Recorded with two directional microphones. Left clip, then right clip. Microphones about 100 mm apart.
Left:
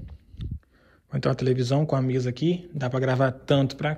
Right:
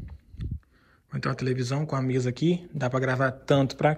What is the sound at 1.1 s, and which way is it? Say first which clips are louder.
Speech: left 5 dB; 25° left (ahead or behind).